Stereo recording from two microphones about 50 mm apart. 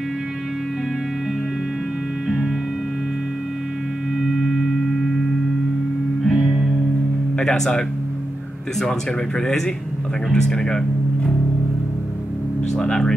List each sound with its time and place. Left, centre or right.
2.2 s music: centre
4.3 s singing bowl: centre
6.2 s music: centre
7.3 s speech: centre
10.3 s speech: centre
12.7 s speech: centre